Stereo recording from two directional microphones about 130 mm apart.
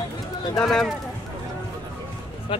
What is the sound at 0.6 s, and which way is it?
Speech, 5° left (ahead or behind).